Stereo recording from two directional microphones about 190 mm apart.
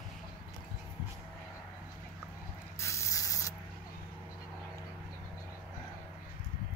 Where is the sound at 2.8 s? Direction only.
15° left (ahead or behind).